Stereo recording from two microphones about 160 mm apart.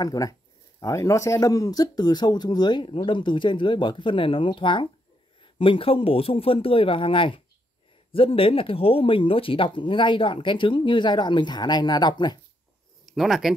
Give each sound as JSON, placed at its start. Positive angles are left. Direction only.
{"t": 0.0, "sound": "speech", "side_deg": 20}
{"t": 13.0, "sound": "speech", "side_deg": 0}